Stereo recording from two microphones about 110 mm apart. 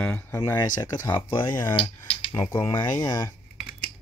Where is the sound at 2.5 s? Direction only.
30° left (ahead or behind).